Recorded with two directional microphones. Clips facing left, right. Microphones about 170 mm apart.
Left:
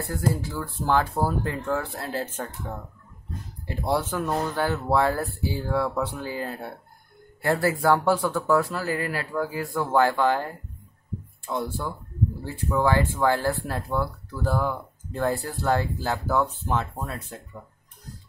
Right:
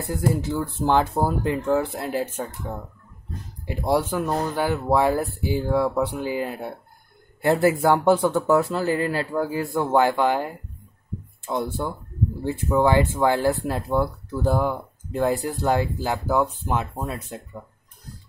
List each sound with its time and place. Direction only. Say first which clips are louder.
0.0 s a man's voice: right 3 dB; 20° right (ahead or behind)